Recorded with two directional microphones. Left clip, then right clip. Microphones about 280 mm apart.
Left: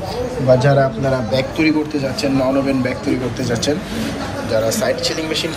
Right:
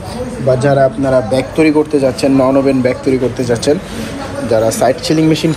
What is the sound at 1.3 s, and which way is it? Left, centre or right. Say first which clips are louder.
Speech: right 5 dB; centre.